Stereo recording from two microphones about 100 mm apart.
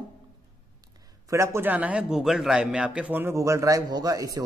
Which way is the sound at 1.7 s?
15° right (ahead or behind).